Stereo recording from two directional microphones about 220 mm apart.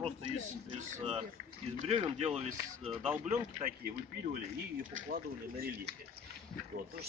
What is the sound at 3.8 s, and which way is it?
Speech, 45° right (ahead or behind).